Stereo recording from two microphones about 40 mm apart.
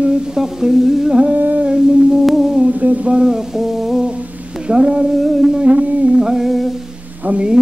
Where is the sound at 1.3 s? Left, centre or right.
Right.